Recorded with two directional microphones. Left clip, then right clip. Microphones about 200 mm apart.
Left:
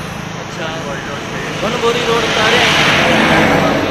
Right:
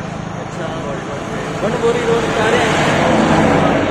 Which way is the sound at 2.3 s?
20° right (ahead or behind).